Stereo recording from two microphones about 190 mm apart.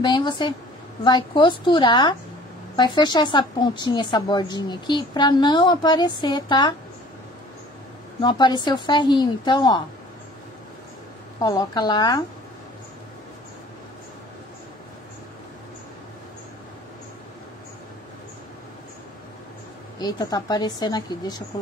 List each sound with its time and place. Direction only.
0.0 s a woman's voice: 25° left (ahead or behind)
8.2 s a woman's voice: 25° left (ahead or behind)
11.4 s a woman's voice: 20° left (ahead or behind)
20.0 s a woman's voice: 20° left (ahead or behind)